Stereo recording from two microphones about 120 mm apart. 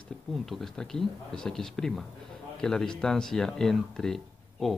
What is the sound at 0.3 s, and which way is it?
A man's voice, centre (ahead or behind).